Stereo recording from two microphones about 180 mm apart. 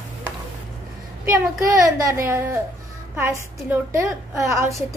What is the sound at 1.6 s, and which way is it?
A woman's voice, 15° right (ahead or behind).